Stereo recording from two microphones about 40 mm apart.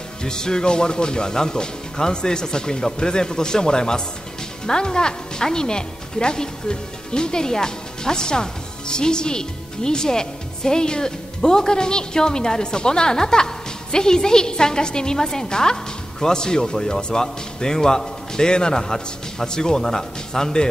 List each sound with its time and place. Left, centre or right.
0.2 s a man's voice: centre